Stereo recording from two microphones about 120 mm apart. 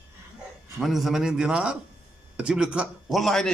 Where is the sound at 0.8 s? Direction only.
Centre (ahead or behind).